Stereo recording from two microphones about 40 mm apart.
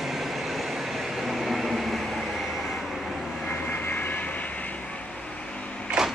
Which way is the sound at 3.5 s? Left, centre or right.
Left.